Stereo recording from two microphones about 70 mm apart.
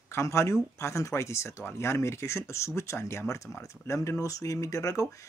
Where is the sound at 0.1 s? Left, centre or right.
Left.